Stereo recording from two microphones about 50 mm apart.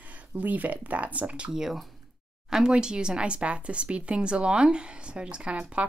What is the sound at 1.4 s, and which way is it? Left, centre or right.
Speech, centre.